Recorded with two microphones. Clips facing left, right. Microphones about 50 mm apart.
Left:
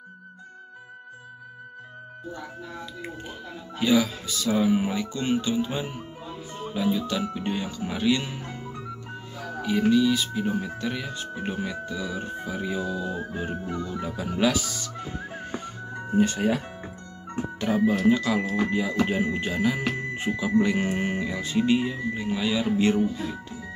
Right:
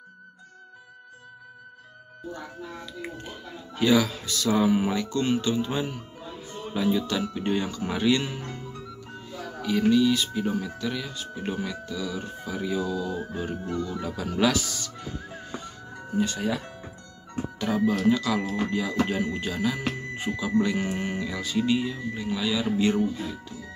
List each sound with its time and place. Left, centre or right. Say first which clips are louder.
3.7 s speech: right 1 dB; centre
8.5 s music: left 1 dB; centre
9.6 s speech: even; centre
10.5 s speech: left 1 dB; left
15.0 s music: left 3 dB; left
17.6 s speech: left 2 dB; left
20.3 s speech: left 2 dB; centre
20.6 s speech: left 2 dB; left